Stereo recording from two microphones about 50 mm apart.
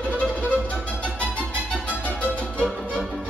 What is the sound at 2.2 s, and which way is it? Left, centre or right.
Music, left.